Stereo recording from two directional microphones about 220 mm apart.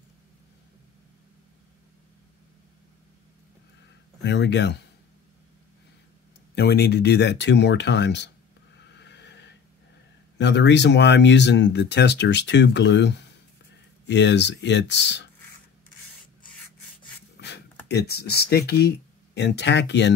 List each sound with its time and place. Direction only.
4.2 s speech: 50° left (ahead or behind)
6.5 s speech: 50° left (ahead or behind)
8.7 s neigh: 50° left (ahead or behind)
10.3 s speech: 50° left (ahead or behind)
17.4 s a sound: 50° left (ahead or behind)
18.7 s speech: 50° left (ahead or behind)